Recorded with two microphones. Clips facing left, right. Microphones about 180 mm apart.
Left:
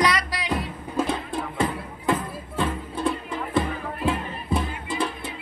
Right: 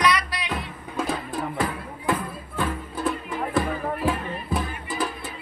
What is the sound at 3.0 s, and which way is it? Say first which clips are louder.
Music: even; centre (ahead or behind).